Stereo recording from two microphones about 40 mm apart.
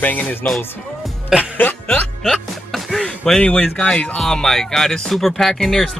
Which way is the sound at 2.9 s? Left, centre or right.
Centre.